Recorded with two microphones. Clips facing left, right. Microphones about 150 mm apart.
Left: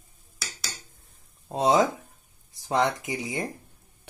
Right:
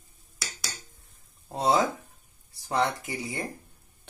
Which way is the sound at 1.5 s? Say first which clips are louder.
Left 3 dB; 20° left (ahead or behind).